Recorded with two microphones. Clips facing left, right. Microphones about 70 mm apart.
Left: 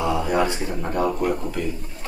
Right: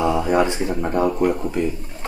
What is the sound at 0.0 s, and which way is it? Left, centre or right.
Speech, right.